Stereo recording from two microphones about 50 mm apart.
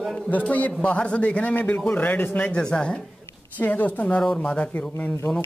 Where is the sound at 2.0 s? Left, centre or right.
Left.